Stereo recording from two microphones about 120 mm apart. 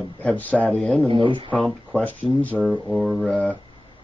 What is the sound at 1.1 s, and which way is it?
Speech, 45° right (ahead or behind).